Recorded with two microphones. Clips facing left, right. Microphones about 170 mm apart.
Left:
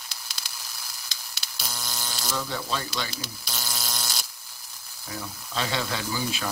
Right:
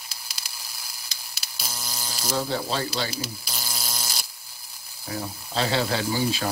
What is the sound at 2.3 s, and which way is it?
Speech, 35° right (ahead or behind).